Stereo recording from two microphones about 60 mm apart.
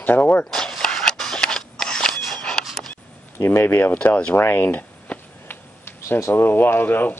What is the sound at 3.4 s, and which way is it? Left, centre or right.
Speech, left.